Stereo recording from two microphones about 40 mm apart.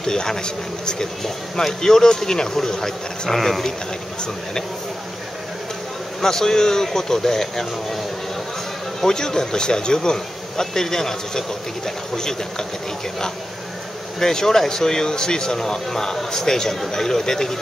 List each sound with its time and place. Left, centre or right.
0.0 s speech: centre
6.2 s speech: centre
9.0 s speech: centre
14.2 s speech: centre